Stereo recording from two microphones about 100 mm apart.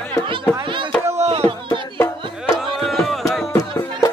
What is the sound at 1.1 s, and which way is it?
Music, 85° right.